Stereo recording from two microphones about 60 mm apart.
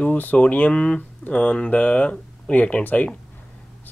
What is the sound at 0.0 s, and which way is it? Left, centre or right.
Speech, left.